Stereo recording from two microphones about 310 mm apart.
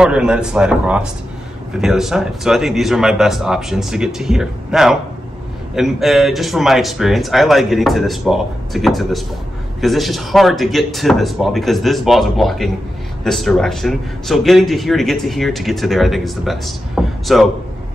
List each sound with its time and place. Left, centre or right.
0.0 s a man's voice: centre